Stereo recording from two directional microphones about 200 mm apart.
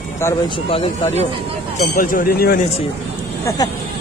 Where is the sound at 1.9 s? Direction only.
45° left (ahead or behind).